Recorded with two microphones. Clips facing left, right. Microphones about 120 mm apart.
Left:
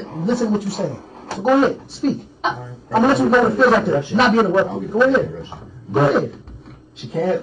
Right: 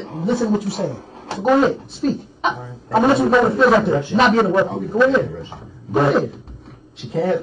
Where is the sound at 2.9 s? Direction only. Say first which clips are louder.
Even; centre (ahead or behind).